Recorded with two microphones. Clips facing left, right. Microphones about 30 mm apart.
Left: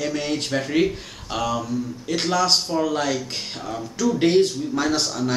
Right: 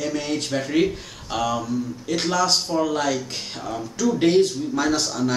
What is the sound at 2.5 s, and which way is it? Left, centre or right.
Speech, centre.